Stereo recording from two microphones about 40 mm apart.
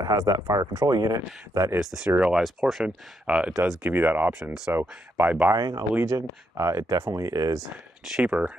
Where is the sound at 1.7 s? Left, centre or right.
Centre.